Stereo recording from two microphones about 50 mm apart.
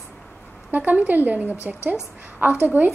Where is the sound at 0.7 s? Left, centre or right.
Right.